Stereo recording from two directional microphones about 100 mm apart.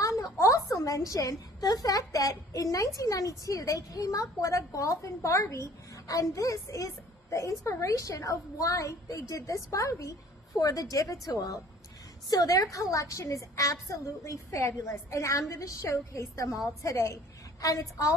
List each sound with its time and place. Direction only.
0.0 s a woman's voice: 35° left (ahead or behind)